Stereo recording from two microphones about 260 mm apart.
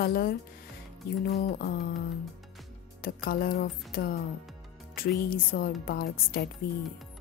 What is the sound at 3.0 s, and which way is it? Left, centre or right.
A woman's voice, left.